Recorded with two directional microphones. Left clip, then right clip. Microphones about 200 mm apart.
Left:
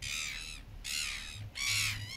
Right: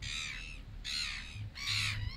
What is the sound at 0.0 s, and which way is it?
Squawk, 50° left (ahead or behind).